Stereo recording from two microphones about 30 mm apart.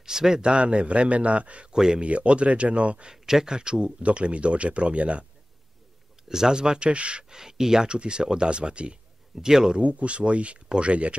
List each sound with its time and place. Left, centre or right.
0.0 s a sound: centre
0.4 s a man's voice: right
1.7 s speech: right
2.0 s a man's voice: right
3.1 s speech: right
4.0 s speech: right
6.2 s speech: centre; by 7.2 s right
7.2 s speech: centre; by 8.9 s right
9.3 s speech: centre
9.8 s a man's voice: right